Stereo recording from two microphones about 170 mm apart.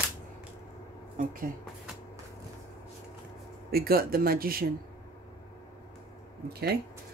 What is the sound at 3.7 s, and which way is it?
Speech, 60° right (ahead or behind).